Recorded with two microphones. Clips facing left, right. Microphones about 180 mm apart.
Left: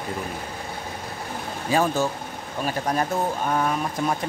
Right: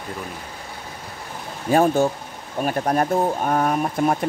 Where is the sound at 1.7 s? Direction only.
55° right (ahead or behind).